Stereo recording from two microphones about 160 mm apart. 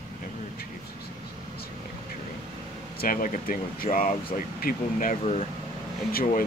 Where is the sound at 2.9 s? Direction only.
65° left (ahead or behind).